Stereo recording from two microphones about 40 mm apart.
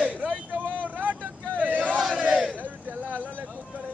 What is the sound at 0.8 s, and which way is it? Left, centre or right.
Vehicle, right.